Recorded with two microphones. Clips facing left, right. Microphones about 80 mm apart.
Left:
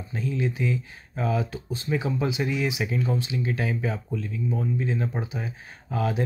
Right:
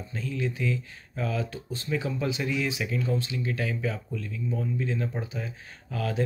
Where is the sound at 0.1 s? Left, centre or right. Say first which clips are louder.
Left 4 dB; centre.